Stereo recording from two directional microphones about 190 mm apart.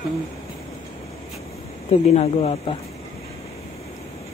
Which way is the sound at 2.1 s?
35° left (ahead or behind).